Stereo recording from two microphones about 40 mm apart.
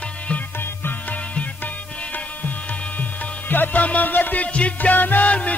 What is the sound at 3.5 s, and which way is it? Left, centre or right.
Music, left.